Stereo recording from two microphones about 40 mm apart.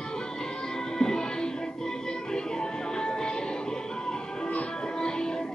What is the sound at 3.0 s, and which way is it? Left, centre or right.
Music, left.